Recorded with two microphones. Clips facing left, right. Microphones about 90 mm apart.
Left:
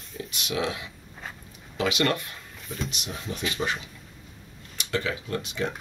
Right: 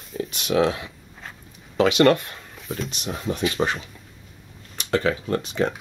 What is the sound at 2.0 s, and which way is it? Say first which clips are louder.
Speech: right 10 dB; 50° right (ahead or behind).